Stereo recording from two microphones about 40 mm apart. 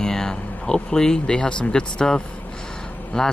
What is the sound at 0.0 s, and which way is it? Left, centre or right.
Speech, centre.